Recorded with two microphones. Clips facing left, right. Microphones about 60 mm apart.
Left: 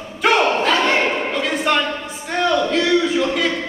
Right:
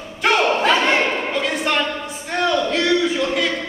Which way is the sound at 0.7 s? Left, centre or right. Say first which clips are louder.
Even; centre.